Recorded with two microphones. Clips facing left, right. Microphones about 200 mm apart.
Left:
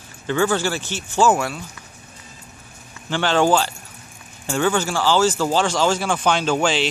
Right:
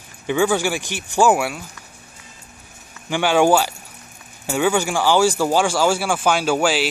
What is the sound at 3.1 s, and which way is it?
Speech, 10° right (ahead or behind).